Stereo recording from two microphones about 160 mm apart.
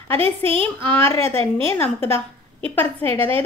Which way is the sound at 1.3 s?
35° right (ahead or behind).